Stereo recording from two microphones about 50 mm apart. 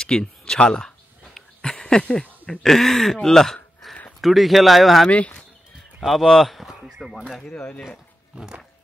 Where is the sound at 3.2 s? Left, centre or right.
Centre.